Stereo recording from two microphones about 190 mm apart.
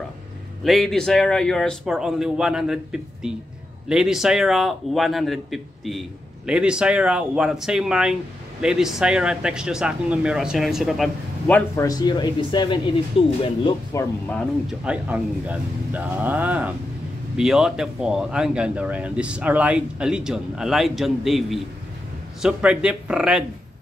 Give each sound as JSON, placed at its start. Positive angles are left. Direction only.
{"t": 0.7, "sound": "a man's voice", "side_deg": 0}
{"t": 13.9, "sound": "speech", "side_deg": 15}
{"t": 14.3, "sound": "a man's voice", "side_deg": 5}
{"t": 14.9, "sound": "a man's voice", "side_deg": -5}